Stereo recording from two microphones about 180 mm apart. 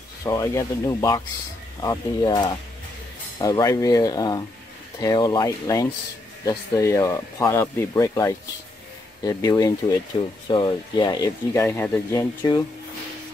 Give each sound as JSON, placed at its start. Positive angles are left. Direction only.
{"t": 0.2, "sound": "speech", "side_deg": 20}